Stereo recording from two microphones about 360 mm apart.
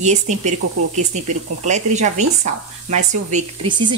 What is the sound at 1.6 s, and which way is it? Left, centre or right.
Speech, centre.